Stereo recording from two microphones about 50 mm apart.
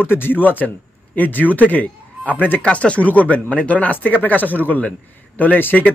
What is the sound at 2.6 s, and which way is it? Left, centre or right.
Speech, left.